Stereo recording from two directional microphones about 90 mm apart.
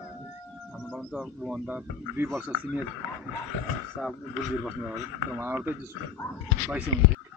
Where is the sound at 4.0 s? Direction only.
5° left (ahead or behind).